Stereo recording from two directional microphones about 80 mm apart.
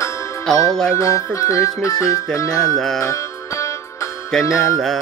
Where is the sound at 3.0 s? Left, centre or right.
Left.